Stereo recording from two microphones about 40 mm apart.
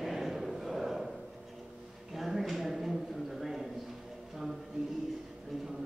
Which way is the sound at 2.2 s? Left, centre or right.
Centre.